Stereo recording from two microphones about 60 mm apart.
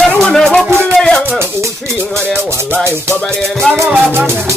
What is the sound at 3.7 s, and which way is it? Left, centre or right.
Music, right.